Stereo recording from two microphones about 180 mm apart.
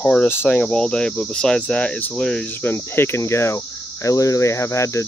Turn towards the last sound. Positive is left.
turn(degrees=15)  # may be behind; listen again after turning